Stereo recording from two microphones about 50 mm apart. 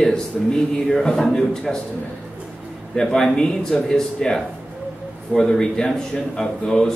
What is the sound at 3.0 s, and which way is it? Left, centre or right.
Speech, centre.